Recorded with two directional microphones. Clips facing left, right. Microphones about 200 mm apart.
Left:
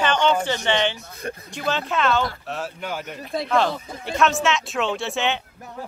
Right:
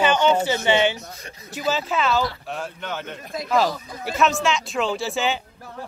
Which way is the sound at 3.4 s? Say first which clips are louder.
Right 1 dB; 5° right (ahead or behind).